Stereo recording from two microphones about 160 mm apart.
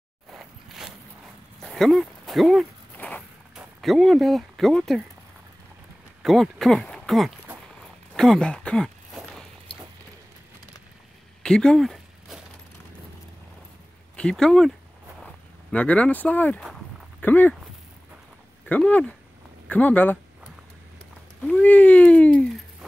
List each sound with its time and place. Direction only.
0.3 s a sound: 5° right (ahead or behind)
3.0 s walk: 10° left (ahead or behind)
3.5 s speech: centre (ahead or behind)
6.2 s speech: centre (ahead or behind)
8.1 s a sound: 5° left (ahead or behind)
11.4 s a sound: 5° left (ahead or behind)
14.1 s speech: 5° left (ahead or behind)
18.7 s speech: 10° left (ahead or behind)
21.4 s speech: 5° left (ahead or behind)